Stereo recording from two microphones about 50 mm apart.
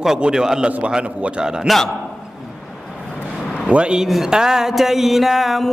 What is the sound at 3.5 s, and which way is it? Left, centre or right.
Speech, right.